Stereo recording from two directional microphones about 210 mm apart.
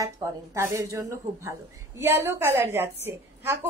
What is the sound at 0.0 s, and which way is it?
A woman's voice, 15° right (ahead or behind).